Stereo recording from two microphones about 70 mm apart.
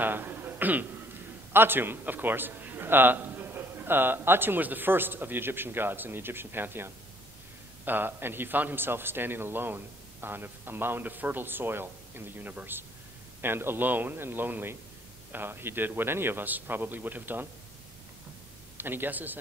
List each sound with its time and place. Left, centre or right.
0.0 s a sound: right
1.5 s a man's voice: right
18.8 s a man's voice: right